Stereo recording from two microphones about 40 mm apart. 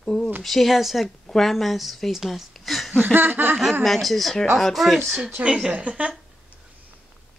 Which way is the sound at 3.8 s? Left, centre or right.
Centre.